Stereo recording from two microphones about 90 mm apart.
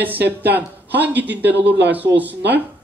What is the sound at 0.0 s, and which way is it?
A man's voice, 20° right (ahead or behind).